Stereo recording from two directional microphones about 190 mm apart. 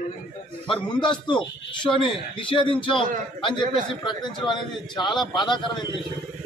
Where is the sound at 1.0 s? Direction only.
25° left (ahead or behind).